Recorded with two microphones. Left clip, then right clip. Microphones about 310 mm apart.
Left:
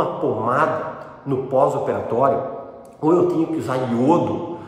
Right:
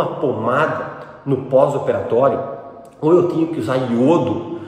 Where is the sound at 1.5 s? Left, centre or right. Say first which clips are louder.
Right 4 dB; centre.